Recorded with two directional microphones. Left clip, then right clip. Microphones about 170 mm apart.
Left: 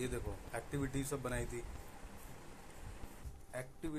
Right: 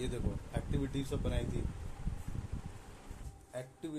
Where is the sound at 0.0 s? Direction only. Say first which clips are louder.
Right 2 dB; centre (ahead or behind).